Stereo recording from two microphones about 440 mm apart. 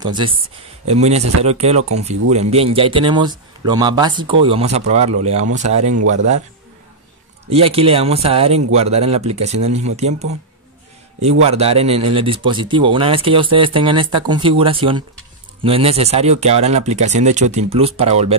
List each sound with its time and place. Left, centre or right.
0.0 s speech: centre
1.8 s speech: right
2.3 s speech: centre
7.4 s speech: centre